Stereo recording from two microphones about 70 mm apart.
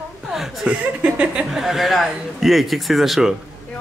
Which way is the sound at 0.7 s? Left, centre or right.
Centre.